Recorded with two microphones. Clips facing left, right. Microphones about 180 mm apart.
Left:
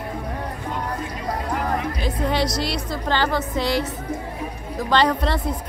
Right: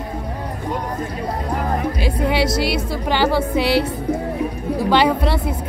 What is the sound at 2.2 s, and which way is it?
Speech, 5° right (ahead or behind).